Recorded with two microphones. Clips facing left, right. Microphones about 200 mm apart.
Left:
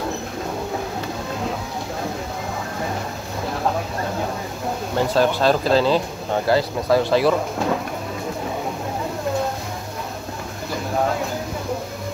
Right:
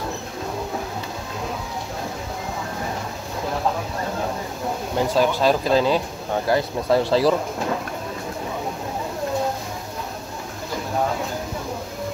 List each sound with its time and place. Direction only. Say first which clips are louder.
4.9 s speech: left 1 dB; 10° right (ahead or behind)
6.5 s speech: left 1 dB; 25° right (ahead or behind)